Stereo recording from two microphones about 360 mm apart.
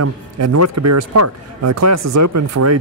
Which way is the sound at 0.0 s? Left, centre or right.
Right.